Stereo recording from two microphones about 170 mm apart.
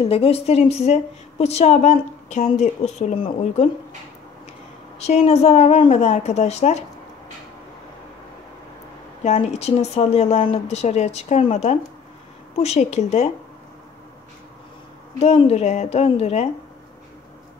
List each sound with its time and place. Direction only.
0.0 s a woman's voice: 35° left (ahead or behind)
4.9 s a woman's voice: 40° left (ahead or behind)
9.2 s a woman's voice: 40° left (ahead or behind)
15.1 s a woman's voice: 35° left (ahead or behind)